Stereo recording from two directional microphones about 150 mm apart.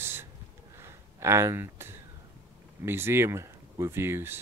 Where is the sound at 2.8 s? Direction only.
15° right (ahead or behind).